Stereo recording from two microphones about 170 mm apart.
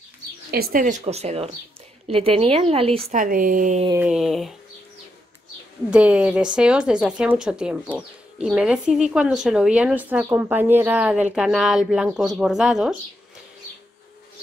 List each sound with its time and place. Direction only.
0.5 s a woman's voice: 65° right (ahead or behind); by 3.2 s 35° right (ahead or behind)
3.2 s speech: 55° right (ahead or behind)
3.9 s speech: 5° right (ahead or behind)
5.9 s a woman's voice: 5° right (ahead or behind)